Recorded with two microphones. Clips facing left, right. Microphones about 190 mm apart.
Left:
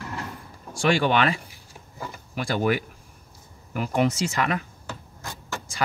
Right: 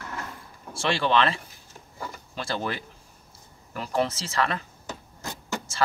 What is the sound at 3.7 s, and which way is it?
Speech, 15° left (ahead or behind).